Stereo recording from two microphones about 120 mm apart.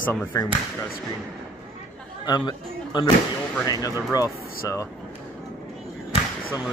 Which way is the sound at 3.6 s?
30° left (ahead or behind).